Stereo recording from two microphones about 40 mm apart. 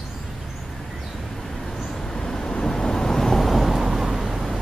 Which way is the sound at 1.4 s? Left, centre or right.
Centre.